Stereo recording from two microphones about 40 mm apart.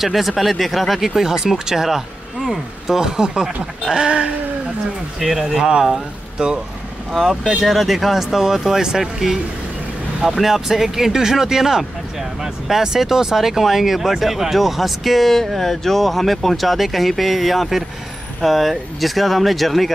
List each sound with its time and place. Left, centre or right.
0.0 s speech: centre
3.9 s a sound: right
5.2 s speech: centre; by 6.6 s right
7.1 s speech: centre